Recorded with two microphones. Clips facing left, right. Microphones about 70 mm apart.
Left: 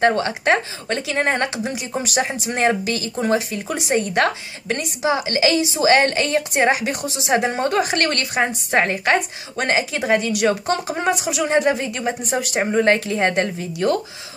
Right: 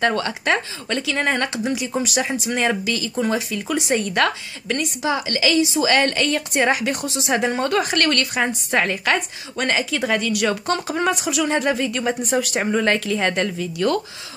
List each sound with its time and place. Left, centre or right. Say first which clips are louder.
0.0 s a woman's voice: left 3 dB; left; by 12.4 s centre
12.5 s a woman's voice: left 6 dB; left